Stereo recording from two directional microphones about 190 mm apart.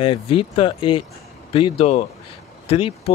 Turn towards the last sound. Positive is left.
turn(degrees=30)  # may be behind; listen again after turning